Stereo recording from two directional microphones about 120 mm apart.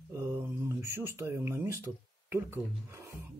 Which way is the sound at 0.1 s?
20° right (ahead or behind).